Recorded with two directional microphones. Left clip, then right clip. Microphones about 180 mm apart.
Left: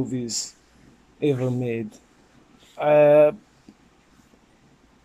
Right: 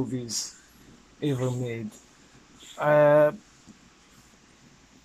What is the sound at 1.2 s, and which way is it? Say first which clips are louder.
Speech: left 6 dB; 10° left (ahead or behind).